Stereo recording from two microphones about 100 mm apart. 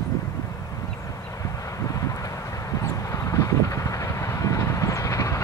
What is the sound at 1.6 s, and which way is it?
Vehicle, 35° left (ahead or behind).